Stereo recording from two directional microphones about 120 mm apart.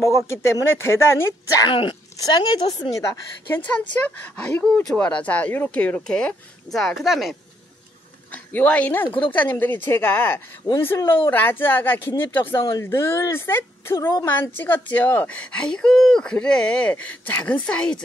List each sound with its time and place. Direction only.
0.0 s a woman's voice: 25° left (ahead or behind)
1.7 s speech: 45° left (ahead or behind)
2.1 s a woman's voice: 35° left (ahead or behind)
3.4 s a woman's voice: 15° left (ahead or behind); by 7.3 s centre (ahead or behind)
8.3 s a woman's voice: 10° left (ahead or behind)